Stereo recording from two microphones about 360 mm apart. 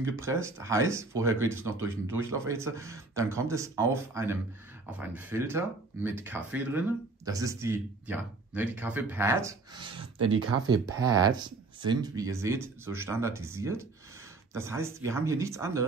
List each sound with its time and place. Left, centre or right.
0.2 s speech: centre
10.1 s speech: right
10.7 s speech: centre